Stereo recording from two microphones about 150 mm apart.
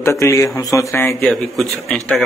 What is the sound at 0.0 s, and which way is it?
Speech, 20° left (ahead or behind).